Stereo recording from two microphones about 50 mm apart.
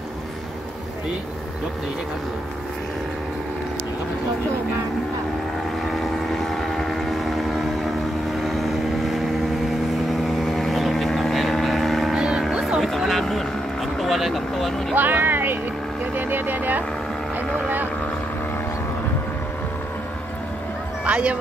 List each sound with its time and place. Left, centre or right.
5.9 s vehicle: centre
12.2 s music: centre
12.8 s vehicle: centre
15.0 s speech: right
16.2 s vehicle: right
21.0 s music: right